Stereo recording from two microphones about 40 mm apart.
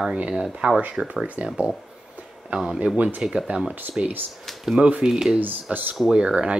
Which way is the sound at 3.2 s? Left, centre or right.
Right.